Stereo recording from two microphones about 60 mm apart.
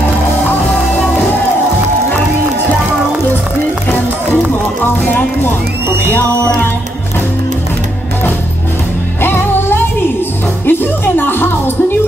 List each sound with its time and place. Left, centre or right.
5.0 s music: left
9.2 s music: left